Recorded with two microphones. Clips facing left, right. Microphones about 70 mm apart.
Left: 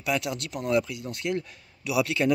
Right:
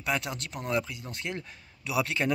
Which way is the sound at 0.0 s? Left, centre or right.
Right.